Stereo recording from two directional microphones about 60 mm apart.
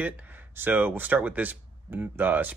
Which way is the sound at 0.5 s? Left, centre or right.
Right.